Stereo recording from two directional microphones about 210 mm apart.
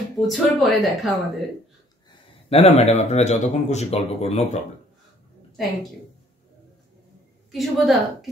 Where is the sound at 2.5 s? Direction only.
30° left (ahead or behind).